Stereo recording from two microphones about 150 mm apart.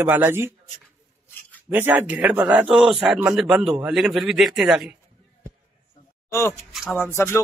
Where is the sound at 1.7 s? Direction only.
10° right (ahead or behind).